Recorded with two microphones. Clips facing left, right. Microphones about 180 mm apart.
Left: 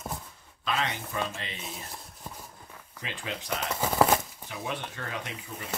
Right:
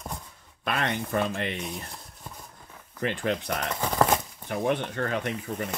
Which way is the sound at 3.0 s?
60° right (ahead or behind).